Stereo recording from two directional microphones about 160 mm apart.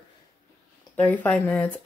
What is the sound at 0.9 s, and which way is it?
Speech, 10° left (ahead or behind).